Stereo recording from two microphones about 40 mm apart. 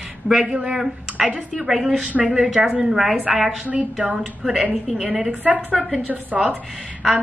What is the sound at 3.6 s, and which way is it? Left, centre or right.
Speech, right.